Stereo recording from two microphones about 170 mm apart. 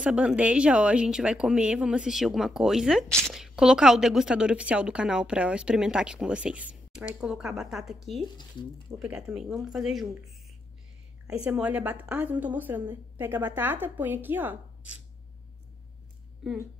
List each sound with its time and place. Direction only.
0.0 s speech: 5° right (ahead or behind)
8.4 s speech: 25° left (ahead or behind)
9.0 s a woman's voice: 5° right (ahead or behind)